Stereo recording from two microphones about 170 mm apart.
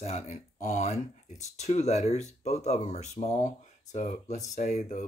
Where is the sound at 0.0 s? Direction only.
40° left (ahead or behind).